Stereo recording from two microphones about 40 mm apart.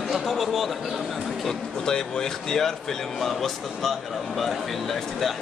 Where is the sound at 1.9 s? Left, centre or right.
Centre.